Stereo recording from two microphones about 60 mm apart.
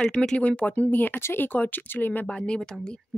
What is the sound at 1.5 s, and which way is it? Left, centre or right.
Speech, left.